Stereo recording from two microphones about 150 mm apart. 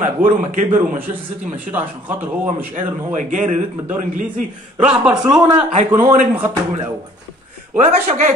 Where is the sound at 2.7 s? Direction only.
60° right (ahead or behind).